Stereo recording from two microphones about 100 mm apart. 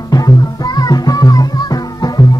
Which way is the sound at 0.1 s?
40° left (ahead or behind).